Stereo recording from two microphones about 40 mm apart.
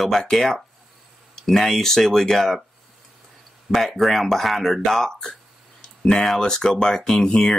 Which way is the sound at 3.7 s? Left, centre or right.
Centre.